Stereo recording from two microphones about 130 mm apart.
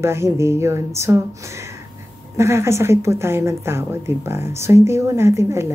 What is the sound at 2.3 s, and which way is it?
A woman's voice, 20° right (ahead or behind).